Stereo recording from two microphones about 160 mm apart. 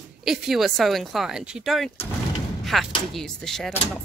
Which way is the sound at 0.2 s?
Centre (ahead or behind).